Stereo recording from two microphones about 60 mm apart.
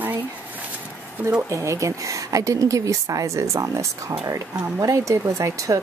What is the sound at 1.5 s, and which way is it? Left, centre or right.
A woman's voice, right.